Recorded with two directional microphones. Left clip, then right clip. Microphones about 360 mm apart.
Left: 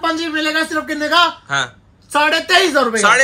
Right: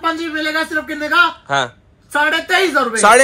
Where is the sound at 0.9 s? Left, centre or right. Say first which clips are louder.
Even; left.